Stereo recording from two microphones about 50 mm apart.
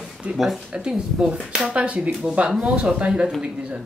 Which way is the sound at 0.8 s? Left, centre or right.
Centre.